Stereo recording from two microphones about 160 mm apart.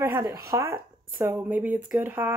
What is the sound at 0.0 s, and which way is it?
Speech, 15° right (ahead or behind).